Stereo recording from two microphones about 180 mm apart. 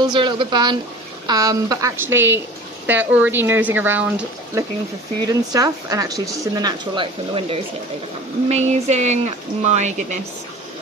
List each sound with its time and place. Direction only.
0.0 s speech: 25° right (ahead or behind); by 4.6 s 10° right (ahead or behind)
5.2 s speech: 20° right (ahead or behind); by 10.1 s 40° right (ahead or behind)